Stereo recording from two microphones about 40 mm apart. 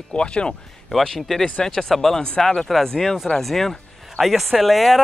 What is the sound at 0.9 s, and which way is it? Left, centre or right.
Speech, centre.